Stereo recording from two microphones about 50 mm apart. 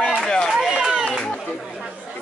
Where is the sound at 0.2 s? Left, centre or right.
Centre.